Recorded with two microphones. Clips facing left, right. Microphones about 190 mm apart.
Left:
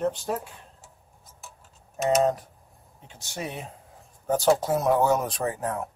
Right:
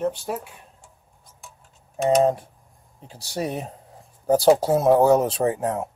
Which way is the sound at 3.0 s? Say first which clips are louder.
Right 7 dB; 35° right (ahead or behind).